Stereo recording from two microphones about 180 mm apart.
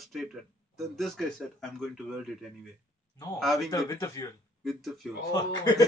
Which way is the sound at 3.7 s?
15° left (ahead or behind).